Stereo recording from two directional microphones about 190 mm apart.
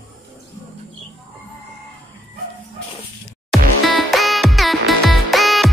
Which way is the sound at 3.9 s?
Centre (ahead or behind).